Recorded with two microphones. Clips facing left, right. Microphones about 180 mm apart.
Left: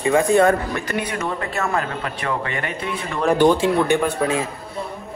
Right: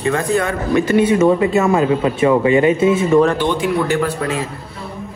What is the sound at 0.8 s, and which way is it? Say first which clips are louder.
Speech: right 12 dB; 25° right (ahead or behind).